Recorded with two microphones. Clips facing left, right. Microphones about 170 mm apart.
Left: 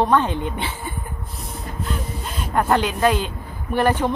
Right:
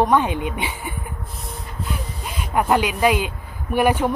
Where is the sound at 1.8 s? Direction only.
10° right (ahead or behind).